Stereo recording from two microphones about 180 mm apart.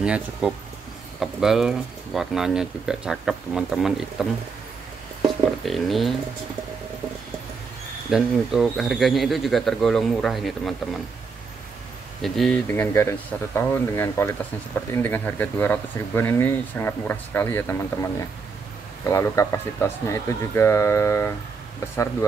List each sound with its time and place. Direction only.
0.0 s speech: 5° right (ahead or behind)
8.1 s speech: centre (ahead or behind)
12.2 s speech: 5° left (ahead or behind)
19.0 s speech: 15° left (ahead or behind)